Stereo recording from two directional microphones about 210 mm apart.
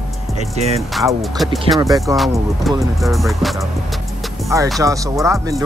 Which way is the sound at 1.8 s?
15° right (ahead or behind).